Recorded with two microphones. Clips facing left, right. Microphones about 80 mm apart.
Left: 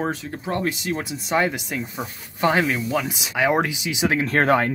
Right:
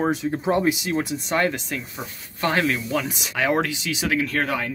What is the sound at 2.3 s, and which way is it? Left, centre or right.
Speech, centre.